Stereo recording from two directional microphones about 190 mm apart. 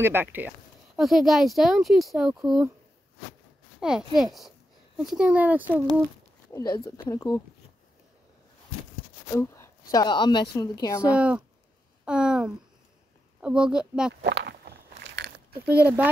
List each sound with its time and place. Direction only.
0.0 s speech: 10° right (ahead or behind)
3.8 s speech: 5° right (ahead or behind)
6.5 s speech: 15° left (ahead or behind)
9.3 s a woman's voice: 15° left (ahead or behind)
11.1 s speech: 5° right (ahead or behind)
14.2 s biting: 60° right (ahead or behind)